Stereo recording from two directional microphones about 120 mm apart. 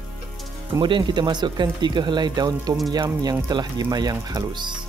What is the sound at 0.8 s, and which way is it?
Speech, 40° right (ahead or behind).